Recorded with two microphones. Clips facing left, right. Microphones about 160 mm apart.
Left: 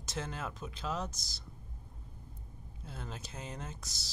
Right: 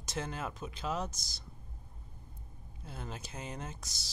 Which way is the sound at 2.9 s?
10° right (ahead or behind).